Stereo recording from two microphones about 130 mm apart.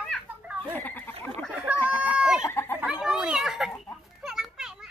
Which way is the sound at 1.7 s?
15° right (ahead or behind).